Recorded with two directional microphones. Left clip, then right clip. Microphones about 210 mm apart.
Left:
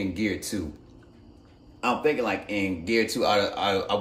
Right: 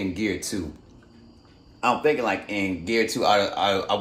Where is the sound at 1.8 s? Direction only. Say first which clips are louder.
Right 3 dB; 5° left (ahead or behind).